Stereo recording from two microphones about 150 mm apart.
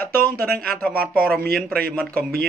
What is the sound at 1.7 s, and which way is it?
Speech, 90° right.